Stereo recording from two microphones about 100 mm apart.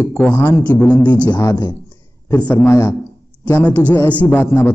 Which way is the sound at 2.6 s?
25° left (ahead or behind).